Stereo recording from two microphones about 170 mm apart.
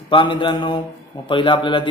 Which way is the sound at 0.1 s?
30° left (ahead or behind).